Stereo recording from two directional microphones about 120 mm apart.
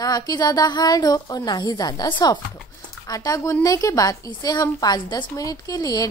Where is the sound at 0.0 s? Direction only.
35° left (ahead or behind).